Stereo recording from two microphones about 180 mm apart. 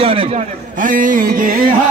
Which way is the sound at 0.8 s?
50° right (ahead or behind).